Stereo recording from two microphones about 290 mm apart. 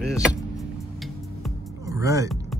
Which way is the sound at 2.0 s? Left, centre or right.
Centre.